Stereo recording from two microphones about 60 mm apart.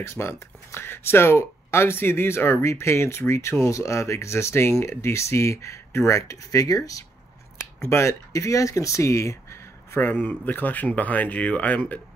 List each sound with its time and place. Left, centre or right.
0.1 s speech: left
7.5 s scissors: left
8.1 s speech: left
9.9 s speech: left